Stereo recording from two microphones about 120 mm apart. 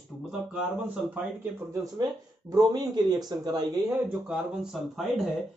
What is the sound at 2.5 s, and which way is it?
Speech, 35° right (ahead or behind).